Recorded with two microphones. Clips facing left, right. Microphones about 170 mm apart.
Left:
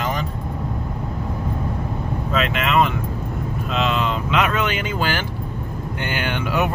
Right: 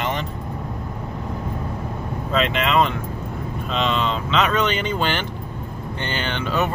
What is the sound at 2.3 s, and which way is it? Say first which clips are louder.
Speech: right 1 dB; centre (ahead or behind).